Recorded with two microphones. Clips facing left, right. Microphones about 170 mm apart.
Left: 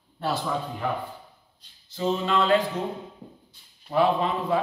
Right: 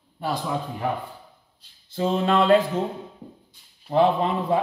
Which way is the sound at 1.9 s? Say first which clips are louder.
Right 3 dB; 55° right (ahead or behind).